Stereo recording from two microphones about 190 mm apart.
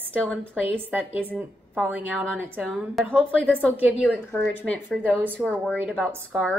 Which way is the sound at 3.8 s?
5° right (ahead or behind).